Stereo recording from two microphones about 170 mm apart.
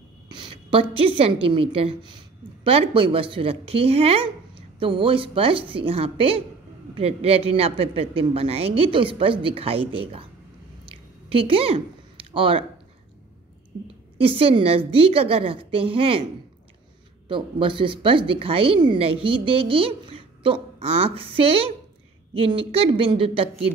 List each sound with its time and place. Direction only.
0.3 s a woman's voice: 30° right (ahead or behind)
10.9 s a sound: 30° right (ahead or behind)
14.1 s speech: 35° right (ahead or behind)
17.3 s speech: 30° right (ahead or behind)